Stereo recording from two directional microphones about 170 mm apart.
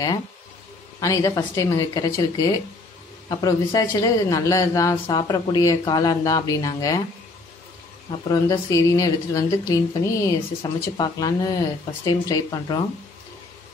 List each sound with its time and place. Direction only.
1.0 s speech: 20° left (ahead or behind)
8.3 s speech: 20° left (ahead or behind)